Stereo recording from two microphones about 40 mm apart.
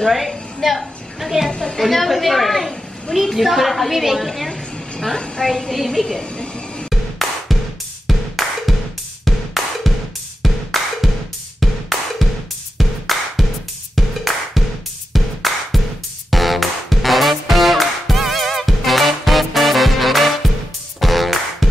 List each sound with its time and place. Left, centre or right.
0.0 s a woman's voice: centre
1.5 s a woman's voice: left
1.8 s a woman's voice: centre
5.1 s a woman's voice: centre
5.5 s a woman's voice: centre
6.3 s a sound: left
6.9 s music: centre